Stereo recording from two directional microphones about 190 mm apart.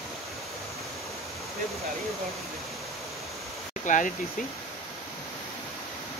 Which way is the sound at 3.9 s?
40° left (ahead or behind).